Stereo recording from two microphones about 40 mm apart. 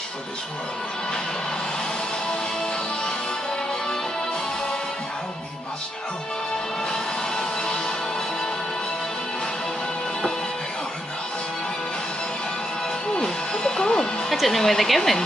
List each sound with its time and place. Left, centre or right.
6.9 s music: centre
13.1 s music: centre
14.3 s speech: centre